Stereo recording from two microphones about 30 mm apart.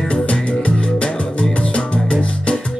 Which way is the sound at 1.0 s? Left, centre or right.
Left.